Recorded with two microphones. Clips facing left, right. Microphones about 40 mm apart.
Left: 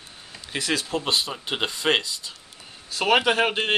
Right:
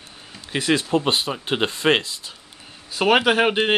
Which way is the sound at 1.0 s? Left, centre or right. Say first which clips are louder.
Right 4 dB; right.